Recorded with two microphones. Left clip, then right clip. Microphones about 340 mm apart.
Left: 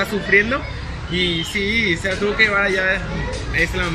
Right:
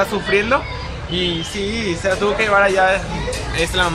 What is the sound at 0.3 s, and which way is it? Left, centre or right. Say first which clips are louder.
Speech: left 1 dB; right.